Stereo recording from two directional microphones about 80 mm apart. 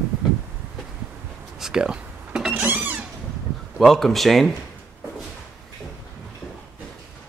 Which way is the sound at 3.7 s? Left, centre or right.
Centre.